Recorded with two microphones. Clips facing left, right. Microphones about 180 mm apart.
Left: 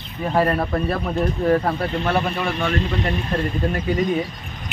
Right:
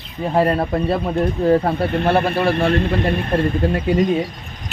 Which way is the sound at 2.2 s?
60° right (ahead or behind).